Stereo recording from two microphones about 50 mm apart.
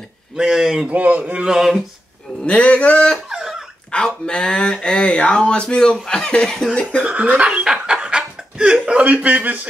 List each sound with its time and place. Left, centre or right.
0.4 s a man's voice: centre
0.8 s a man's voice: right
1.4 s a man's voice: centre
2.4 s speech: left
3.3 s dog: centre
3.9 s speech: centre
7.1 s a man's voice: right
7.4 s speech: centre